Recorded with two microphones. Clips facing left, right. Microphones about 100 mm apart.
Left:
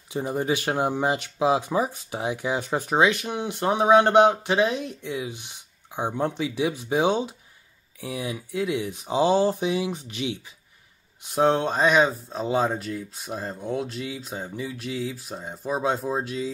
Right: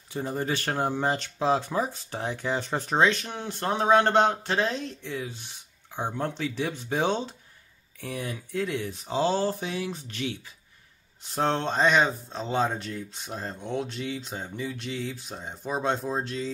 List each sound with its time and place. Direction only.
0.1 s speech: 15° left (ahead or behind)